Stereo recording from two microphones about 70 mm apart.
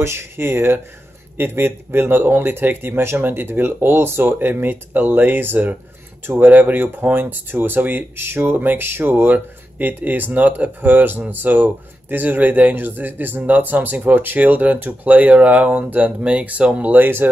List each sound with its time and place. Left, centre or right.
0.0 s speech: right